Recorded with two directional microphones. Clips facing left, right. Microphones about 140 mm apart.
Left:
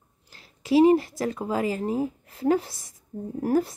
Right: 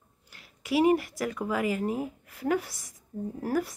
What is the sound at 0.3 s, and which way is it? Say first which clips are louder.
Speech: left 7 dB; 30° left (ahead or behind).